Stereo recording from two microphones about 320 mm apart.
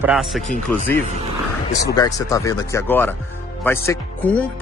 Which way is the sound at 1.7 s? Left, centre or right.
Left.